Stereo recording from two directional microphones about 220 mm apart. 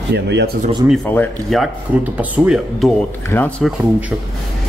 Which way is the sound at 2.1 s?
5° right (ahead or behind).